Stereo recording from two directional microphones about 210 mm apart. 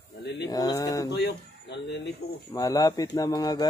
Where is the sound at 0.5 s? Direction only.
15° left (ahead or behind).